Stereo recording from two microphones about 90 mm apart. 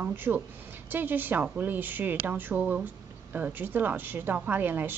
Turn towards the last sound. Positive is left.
turn(degrees=-20)  # may be behind; listen again after turning